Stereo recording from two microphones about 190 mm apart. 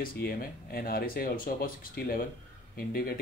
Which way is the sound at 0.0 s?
50° left (ahead or behind).